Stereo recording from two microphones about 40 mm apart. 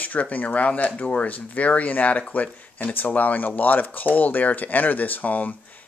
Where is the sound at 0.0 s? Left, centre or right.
Left.